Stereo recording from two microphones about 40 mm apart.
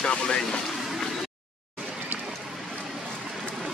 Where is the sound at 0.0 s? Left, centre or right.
Left.